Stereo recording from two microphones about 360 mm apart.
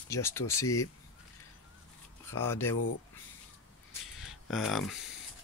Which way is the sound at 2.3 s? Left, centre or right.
Centre.